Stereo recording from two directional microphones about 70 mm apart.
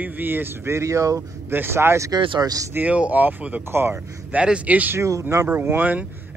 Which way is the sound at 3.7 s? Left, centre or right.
Right.